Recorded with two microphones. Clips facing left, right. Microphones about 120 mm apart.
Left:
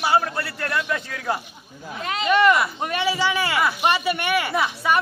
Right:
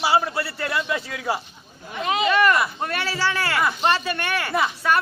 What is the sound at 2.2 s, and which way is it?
A man's voice, 20° left (ahead or behind).